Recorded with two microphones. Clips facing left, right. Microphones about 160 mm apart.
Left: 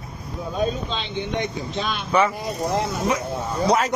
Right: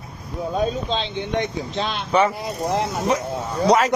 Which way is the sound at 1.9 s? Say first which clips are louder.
Right 1 dB; 30° right (ahead or behind).